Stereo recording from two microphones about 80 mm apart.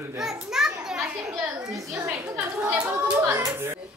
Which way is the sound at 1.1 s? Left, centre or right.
Centre.